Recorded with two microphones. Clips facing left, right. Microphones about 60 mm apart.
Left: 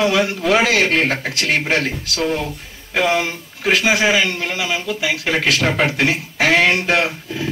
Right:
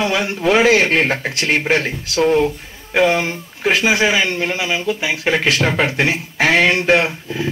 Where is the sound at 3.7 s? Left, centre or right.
Right.